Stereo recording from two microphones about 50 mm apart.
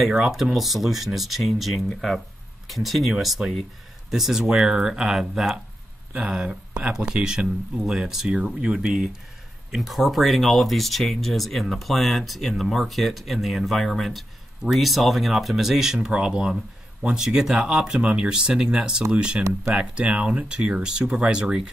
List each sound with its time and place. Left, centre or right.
0.1 s speech: centre
6.7 s speech: centre
9.7 s speech: centre